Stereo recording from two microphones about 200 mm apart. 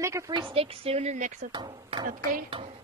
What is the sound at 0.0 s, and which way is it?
Speech, 15° right (ahead or behind).